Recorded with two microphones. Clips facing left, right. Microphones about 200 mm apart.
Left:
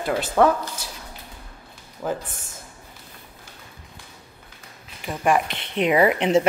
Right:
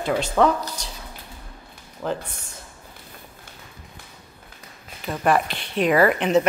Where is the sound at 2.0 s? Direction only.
10° left (ahead or behind).